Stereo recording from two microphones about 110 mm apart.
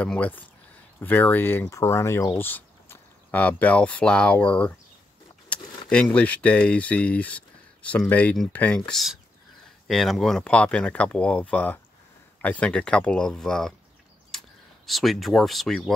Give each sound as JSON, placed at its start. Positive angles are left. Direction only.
{"t": 0.0, "sound": "speech", "side_deg": 15}
{"t": 14.9, "sound": "speech", "side_deg": 0}